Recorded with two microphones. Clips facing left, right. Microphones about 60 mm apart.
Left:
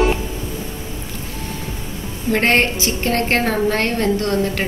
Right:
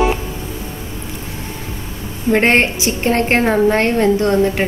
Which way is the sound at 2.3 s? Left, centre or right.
Right.